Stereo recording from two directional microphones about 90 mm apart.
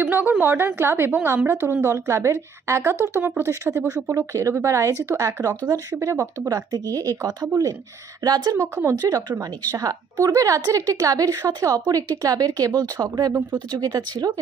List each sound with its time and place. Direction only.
0.0 s a woman's voice: 20° right (ahead or behind); by 8.5 s 45° right (ahead or behind)
8.5 s a woman's voice: 20° right (ahead or behind)
9.4 s a woman's voice: 45° right (ahead or behind)